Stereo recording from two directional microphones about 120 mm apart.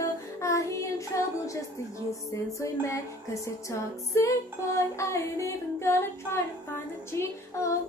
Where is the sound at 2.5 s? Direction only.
25° left (ahead or behind).